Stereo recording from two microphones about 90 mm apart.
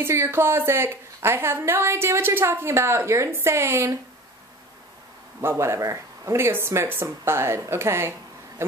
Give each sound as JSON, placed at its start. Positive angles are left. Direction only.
{"t": 0.0, "sound": "a woman's voice", "side_deg": -25}
{"t": 5.4, "sound": "a woman's voice", "side_deg": -30}